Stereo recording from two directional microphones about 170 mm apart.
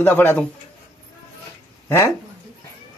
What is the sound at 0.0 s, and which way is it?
Speech, 10° left (ahead or behind).